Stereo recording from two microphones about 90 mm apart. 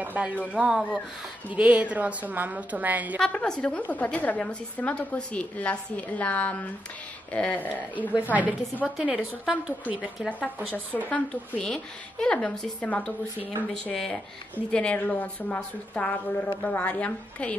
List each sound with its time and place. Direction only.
0.0 s a woman's voice: 15° right (ahead or behind)
3.2 s a woman's voice: 10° left (ahead or behind)
8.1 s a woman's voice: 15° right (ahead or behind)
11.1 s a woman's voice: 15° left (ahead or behind)